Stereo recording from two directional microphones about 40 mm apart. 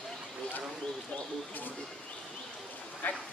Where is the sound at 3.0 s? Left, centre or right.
Left.